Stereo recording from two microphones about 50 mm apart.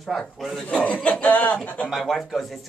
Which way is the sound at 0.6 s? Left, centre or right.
Left.